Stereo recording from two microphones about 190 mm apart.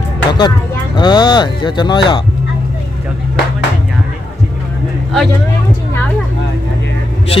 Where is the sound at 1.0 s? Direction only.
20° left (ahead or behind).